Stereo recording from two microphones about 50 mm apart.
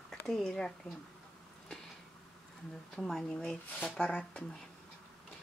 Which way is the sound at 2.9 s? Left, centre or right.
Centre.